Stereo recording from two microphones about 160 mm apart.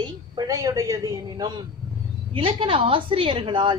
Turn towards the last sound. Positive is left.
turn(degrees=-30)  # may be behind; listen again after turning